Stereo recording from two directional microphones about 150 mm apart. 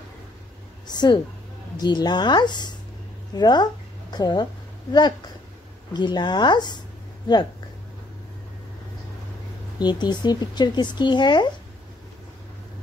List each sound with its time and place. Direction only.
0.8 s speech: 30° left (ahead or behind)
5.9 s speech: 30° left (ahead or behind)
9.8 s speech: 30° left (ahead or behind)